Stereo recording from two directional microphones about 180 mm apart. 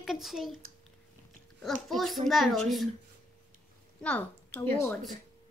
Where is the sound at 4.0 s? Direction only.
5° left (ahead or behind).